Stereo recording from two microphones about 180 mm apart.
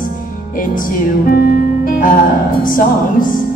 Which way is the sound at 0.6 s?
50° left (ahead or behind).